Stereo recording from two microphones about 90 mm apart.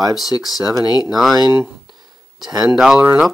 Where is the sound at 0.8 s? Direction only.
50° left (ahead or behind).